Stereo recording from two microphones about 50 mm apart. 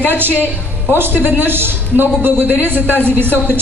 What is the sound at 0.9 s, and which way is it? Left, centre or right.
A man's voice, right.